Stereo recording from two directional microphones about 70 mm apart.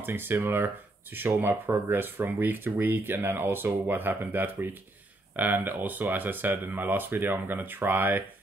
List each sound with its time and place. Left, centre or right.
0.0 s speech: right